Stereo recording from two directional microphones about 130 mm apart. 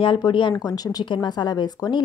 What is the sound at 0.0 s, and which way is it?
Speech, 40° left (ahead or behind).